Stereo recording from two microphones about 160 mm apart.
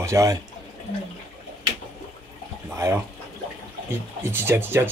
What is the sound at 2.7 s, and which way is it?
Speech, 15° right (ahead or behind).